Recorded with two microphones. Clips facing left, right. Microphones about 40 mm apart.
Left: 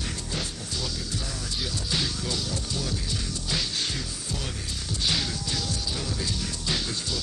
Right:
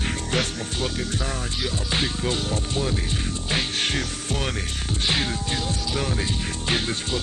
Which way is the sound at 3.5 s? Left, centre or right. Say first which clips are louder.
Right 5 dB; right.